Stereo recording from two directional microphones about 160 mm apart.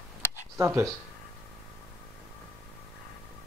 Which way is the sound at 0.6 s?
15° right (ahead or behind).